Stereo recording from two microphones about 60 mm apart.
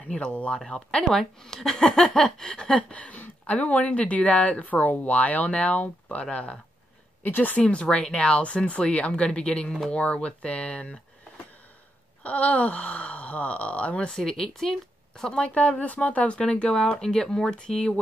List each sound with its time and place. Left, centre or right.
0.0 s speech: centre
7.2 s speech: left
12.2 s speech: left
14.1 s speech: centre
15.4 s speech: left